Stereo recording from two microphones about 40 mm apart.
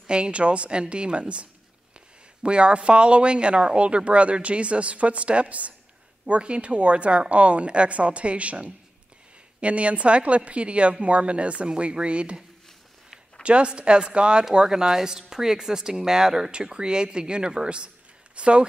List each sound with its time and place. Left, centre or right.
0.0 s a woman's voice: right
13.4 s speech: right